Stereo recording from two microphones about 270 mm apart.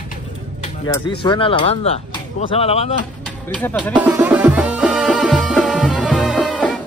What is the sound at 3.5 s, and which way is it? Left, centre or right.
Speech, centre.